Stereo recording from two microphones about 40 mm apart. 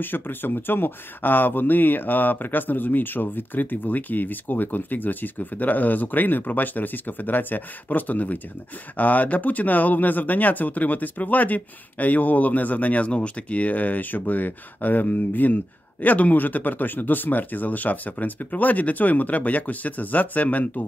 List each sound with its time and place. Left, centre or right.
0.0 s speech: left